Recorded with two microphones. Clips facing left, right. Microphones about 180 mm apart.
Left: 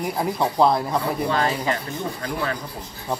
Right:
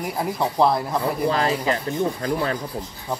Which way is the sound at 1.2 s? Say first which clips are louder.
Right 1 dB; 30° right (ahead or behind).